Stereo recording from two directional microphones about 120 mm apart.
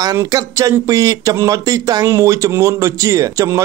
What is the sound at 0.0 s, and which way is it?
Speech, 30° right (ahead or behind).